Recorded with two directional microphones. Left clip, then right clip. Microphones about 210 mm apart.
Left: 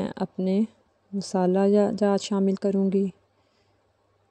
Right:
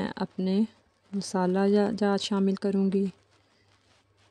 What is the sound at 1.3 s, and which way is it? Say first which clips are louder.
Speech: left 4 dB; 15° left (ahead or behind).